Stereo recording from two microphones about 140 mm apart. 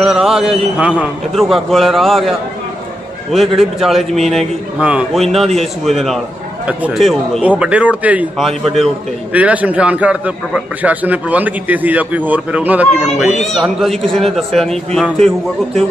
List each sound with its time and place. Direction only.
0.0 s a sound: 5° right (ahead or behind)
1.3 s a man's voice: centre (ahead or behind)
4.7 s a man's voice: 10° right (ahead or behind)
8.4 s a man's voice: centre (ahead or behind)
9.3 s a man's voice: 10° right (ahead or behind)